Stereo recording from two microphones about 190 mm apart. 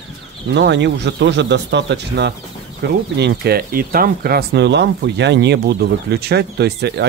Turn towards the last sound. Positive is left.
turn(degrees=-60)  # may be behind; listen again after turning